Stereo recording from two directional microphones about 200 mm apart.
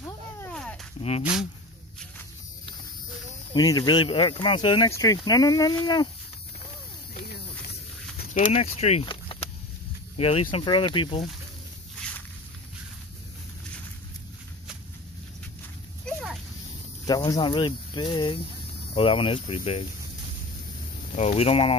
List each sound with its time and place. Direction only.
0.4 s a sound: 5° left (ahead or behind)
1.2 s speech: 5° right (ahead or behind)
3.5 s speech: 20° left (ahead or behind)
8.2 s speech: 40° left (ahead or behind)
16.1 s a sound: centre (ahead or behind)
17.0 s speech: 20° left (ahead or behind)
21.2 s speech: 30° left (ahead or behind)